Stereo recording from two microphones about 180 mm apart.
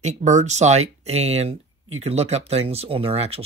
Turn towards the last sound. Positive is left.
turn(degrees=-35)  # may be behind; listen again after turning